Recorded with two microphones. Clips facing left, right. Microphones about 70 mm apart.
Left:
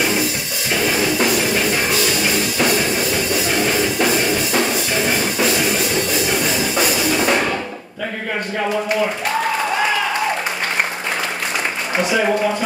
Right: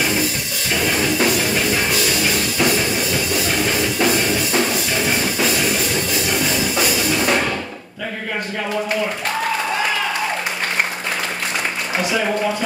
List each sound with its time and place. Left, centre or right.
0.7 s music: centre
12.0 s a man's voice: centre